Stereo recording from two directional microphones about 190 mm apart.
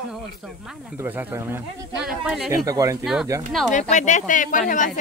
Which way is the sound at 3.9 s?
40° left (ahead or behind).